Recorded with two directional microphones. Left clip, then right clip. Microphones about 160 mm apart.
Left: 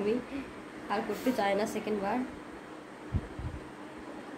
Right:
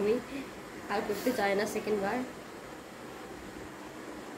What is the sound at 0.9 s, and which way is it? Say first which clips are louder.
Speech: even; 10° left (ahead or behind).